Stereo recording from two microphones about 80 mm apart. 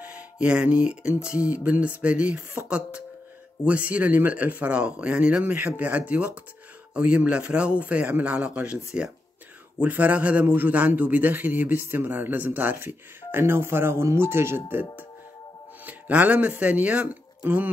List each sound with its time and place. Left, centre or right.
0.0 s music: centre
1.4 s speech: centre
3.6 s a man's voice: centre
15.8 s speech: centre